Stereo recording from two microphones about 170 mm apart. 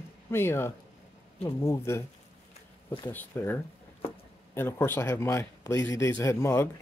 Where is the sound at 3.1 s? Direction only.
10° left (ahead or behind).